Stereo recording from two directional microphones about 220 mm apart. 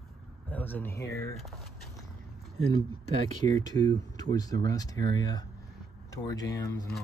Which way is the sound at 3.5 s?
15° left (ahead or behind).